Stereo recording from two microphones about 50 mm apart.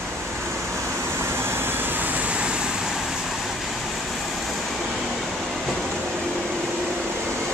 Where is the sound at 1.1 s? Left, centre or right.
Right; by 3.0 s centre.